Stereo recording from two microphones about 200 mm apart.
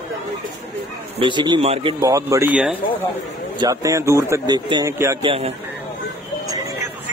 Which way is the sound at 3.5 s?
15° right (ahead or behind).